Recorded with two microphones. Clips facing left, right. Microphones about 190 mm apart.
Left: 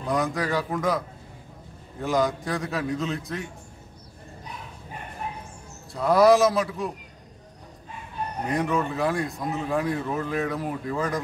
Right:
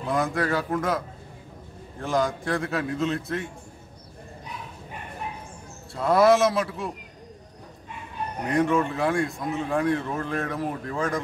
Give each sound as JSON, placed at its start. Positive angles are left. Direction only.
{"t": 0.0, "sound": "speech", "side_deg": 0}
{"t": 5.9, "sound": "speech", "side_deg": 0}
{"t": 8.5, "sound": "speech", "side_deg": 0}